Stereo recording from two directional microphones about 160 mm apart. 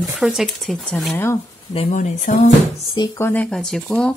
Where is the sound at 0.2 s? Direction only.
Centre (ahead or behind).